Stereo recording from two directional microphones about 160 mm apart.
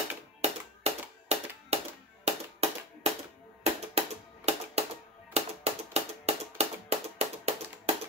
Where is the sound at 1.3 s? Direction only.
40° right (ahead or behind).